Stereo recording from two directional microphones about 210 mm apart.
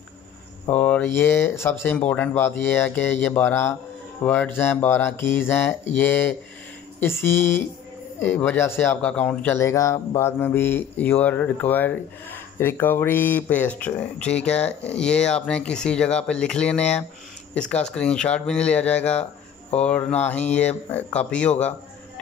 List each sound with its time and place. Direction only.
0.7 s speech: 5° left (ahead or behind)
14.7 s speech: 55° left (ahead or behind)
15.0 s speech: 5° left (ahead or behind)